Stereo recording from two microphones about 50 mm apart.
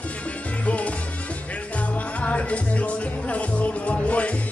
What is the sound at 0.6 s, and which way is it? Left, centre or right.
Music, left.